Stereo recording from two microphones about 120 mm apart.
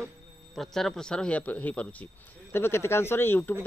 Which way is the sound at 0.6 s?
5° left (ahead or behind).